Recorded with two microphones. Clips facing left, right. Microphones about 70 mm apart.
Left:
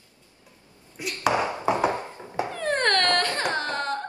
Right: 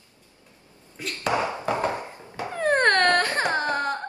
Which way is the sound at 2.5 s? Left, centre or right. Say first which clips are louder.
Right 4 dB; right.